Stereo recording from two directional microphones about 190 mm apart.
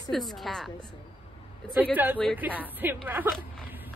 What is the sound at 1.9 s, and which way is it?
Speech, 10° right (ahead or behind).